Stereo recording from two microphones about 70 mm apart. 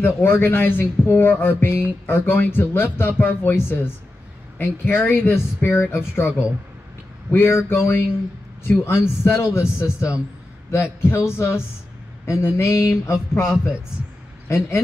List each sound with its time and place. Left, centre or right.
0.0 s speech: left
12.3 s a sound: left
14.5 s speech: left